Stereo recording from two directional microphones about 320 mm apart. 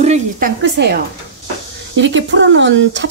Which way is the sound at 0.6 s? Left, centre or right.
Right.